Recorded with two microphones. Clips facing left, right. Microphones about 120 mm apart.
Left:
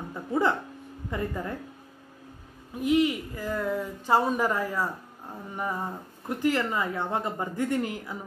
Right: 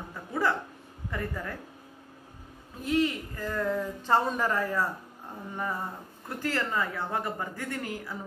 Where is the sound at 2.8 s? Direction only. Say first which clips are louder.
Left 4 dB; 15° left (ahead or behind).